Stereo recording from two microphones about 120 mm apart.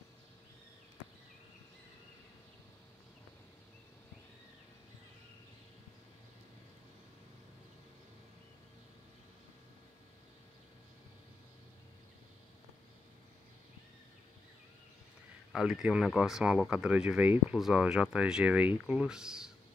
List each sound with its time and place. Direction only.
15.5 s speech: 5° right (ahead or behind)